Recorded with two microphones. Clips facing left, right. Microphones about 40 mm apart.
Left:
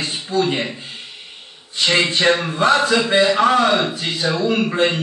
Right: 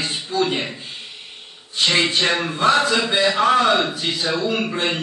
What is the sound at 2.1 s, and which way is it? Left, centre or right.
A man's voice, left.